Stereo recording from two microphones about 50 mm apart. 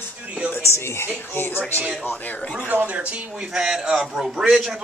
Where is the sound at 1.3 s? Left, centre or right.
Left.